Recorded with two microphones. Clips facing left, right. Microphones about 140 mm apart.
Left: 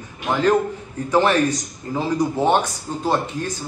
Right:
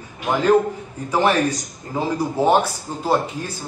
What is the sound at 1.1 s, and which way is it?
Speech, 10° right (ahead or behind).